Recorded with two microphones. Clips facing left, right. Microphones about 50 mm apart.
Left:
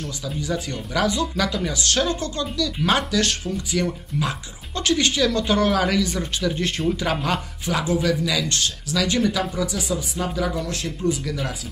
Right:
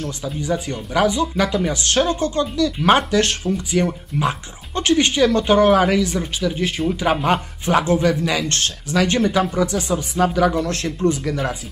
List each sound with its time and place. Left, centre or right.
0.2 s speech: right
7.0 s speech: right
7.7 s speech: right